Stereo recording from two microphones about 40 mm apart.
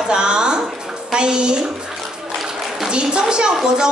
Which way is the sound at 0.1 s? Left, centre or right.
Right.